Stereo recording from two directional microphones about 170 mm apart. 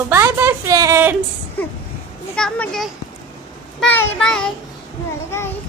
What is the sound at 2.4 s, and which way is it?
Speech, 5° left (ahead or behind).